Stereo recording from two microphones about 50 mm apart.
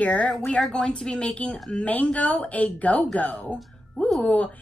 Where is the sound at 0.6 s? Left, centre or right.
Centre; by 4.5 s left.